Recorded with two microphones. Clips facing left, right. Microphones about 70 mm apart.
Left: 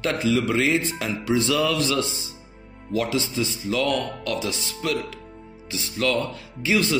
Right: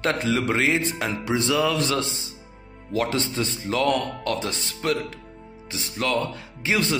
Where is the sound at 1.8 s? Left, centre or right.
Right.